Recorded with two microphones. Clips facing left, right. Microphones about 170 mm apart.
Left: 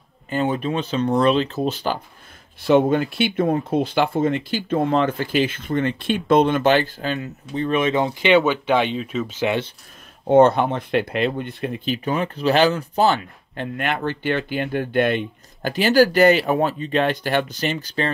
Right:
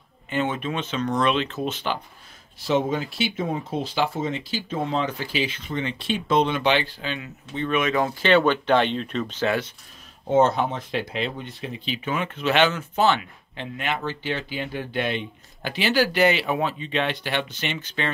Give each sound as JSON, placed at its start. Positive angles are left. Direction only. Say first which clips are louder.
{"t": 0.3, "sound": "speech", "louder": "left 4 dB", "side_deg": 35}
{"t": 2.6, "sound": "speech", "louder": "left 7 dB", "side_deg": 60}
{"t": 8.1, "sound": "speech", "louder": "left 1 dB", "side_deg": 15}
{"t": 10.2, "sound": "speech", "louder": "left 5 dB", "side_deg": 60}
{"t": 14.0, "sound": "speech", "louder": "left 6 dB", "side_deg": 55}